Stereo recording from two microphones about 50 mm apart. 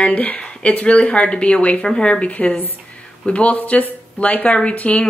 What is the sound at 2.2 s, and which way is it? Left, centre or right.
A woman's voice, left.